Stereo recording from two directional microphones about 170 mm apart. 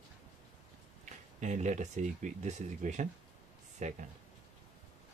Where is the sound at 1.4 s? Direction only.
45° right (ahead or behind).